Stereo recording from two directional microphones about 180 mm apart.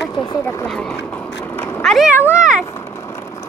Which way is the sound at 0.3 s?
15° left (ahead or behind).